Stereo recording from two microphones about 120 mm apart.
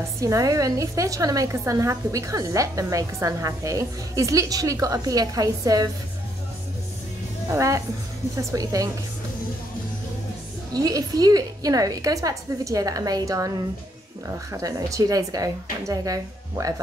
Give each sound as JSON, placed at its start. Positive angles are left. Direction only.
{"t": 0.2, "sound": "a woman's voice", "side_deg": -30}
{"t": 7.4, "sound": "a woman's voice", "side_deg": -25}
{"t": 10.7, "sound": "a woman's voice", "side_deg": -30}